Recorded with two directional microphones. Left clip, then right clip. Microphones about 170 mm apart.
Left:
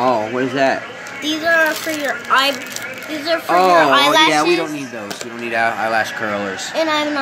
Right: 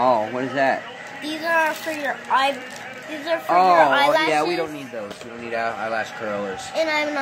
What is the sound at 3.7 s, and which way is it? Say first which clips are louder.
Speech: left 4 dB; 35° right (ahead or behind).